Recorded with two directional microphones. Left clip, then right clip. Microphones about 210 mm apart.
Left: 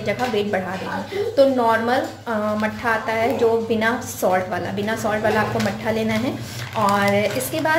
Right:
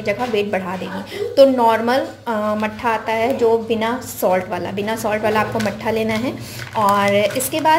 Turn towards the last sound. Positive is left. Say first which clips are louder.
# right 4 dB
turn(degrees=-30)  # may be behind; listen again after turning